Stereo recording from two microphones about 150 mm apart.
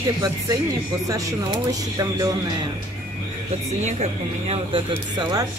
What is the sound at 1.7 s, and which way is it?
Speech, 25° right (ahead or behind).